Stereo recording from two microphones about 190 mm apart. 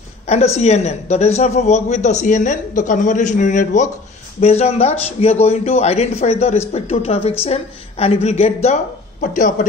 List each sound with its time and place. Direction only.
0.3 s speech: 35° left (ahead or behind)